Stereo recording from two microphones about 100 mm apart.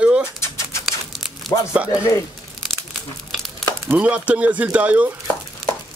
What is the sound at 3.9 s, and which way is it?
Speech, 15° right (ahead or behind).